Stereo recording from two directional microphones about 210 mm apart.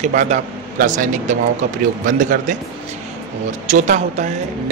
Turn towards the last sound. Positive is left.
turn(degrees=-35)  # may be behind; listen again after turning